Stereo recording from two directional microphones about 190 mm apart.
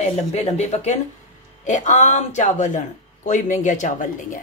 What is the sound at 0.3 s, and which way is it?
Speech, 35° left (ahead or behind).